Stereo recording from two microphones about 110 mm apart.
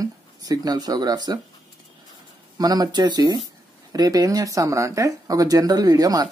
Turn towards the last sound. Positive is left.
turn(degrees=-35)  # may be behind; listen again after turning